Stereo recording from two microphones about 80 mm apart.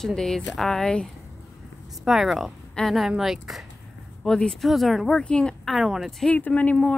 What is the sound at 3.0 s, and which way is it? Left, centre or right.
Speech, centre.